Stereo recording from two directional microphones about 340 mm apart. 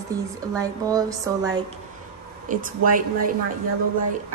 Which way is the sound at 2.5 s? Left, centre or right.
Right.